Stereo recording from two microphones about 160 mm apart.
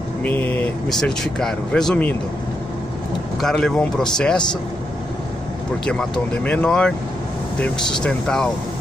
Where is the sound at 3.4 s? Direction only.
5° left (ahead or behind).